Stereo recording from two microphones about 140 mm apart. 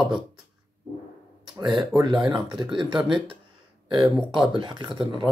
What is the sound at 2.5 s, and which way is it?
Speech, 35° right (ahead or behind).